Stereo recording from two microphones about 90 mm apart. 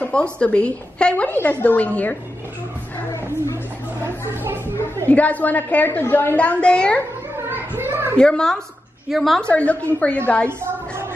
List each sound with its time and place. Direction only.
0.0 s a woman's voice: 10° left (ahead or behind)
4.0 s a sound: 25° right (ahead or behind)
5.1 s a woman's voice: 15° left (ahead or behind)
7.4 s children playing: 25° right (ahead or behind)
8.2 s a woman's voice: 10° left (ahead or behind)
9.4 s a woman's voice: 15° left (ahead or behind)